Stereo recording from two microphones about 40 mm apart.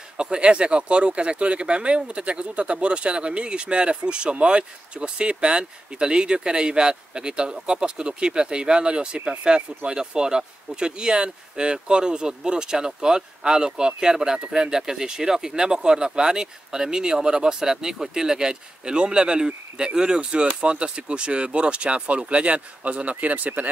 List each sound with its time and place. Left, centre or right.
0.2 s speech: right